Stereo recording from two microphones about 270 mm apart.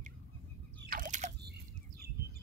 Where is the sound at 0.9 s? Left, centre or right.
Right.